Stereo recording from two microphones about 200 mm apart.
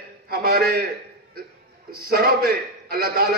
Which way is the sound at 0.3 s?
50° right (ahead or behind).